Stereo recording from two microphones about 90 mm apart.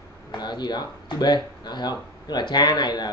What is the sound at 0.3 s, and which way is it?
Speech, 55° left (ahead or behind).